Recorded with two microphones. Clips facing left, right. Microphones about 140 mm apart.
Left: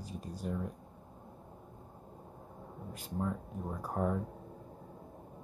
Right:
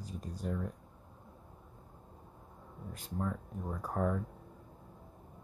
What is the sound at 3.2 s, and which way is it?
Speech, 20° left (ahead or behind).